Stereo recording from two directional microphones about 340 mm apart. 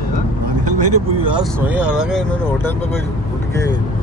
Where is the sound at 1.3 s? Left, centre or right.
Centre.